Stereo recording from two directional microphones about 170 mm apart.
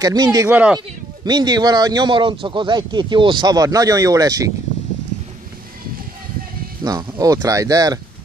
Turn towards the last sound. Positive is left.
turn(degrees=-20)  # may be behind; listen again after turning